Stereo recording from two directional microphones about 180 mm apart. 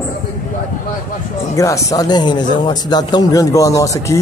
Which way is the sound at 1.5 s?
15° left (ahead or behind).